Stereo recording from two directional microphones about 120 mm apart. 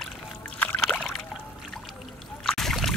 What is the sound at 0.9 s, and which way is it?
Rowboat, 10° left (ahead or behind).